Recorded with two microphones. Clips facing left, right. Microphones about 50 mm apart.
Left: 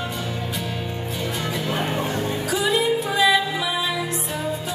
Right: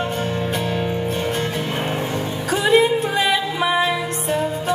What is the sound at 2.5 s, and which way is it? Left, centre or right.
Music, right.